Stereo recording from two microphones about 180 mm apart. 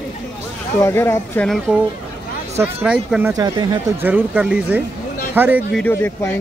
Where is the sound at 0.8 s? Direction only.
15° left (ahead or behind).